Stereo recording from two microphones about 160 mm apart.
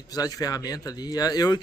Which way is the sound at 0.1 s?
25° left (ahead or behind).